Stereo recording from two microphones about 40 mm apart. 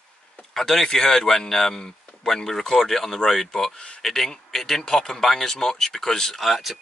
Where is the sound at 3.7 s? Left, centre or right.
Left.